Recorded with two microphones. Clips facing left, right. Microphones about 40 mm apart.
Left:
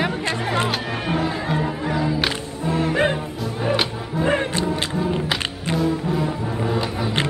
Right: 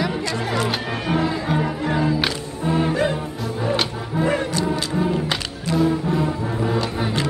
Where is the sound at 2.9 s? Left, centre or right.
Left.